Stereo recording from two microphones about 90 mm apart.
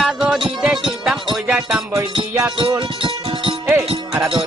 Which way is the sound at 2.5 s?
70° right (ahead or behind).